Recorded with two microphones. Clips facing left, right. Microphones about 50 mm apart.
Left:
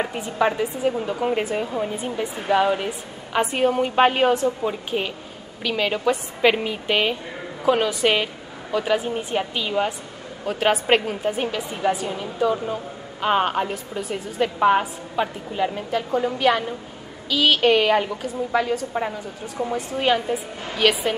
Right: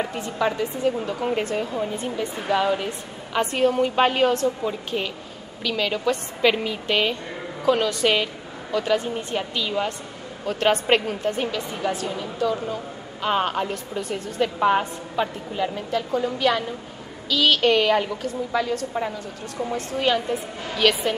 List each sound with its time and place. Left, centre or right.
0.0 s a woman's voice: centre